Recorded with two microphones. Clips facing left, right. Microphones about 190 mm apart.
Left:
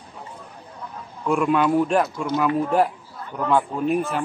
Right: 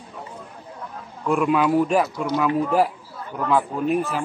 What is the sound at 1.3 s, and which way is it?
A man's voice, centre (ahead or behind).